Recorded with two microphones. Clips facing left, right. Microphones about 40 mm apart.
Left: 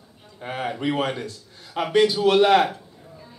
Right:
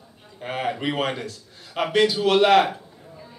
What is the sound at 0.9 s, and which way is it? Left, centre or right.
A man's voice, centre.